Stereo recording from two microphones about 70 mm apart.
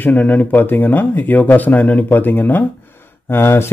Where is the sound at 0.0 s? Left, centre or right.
Left.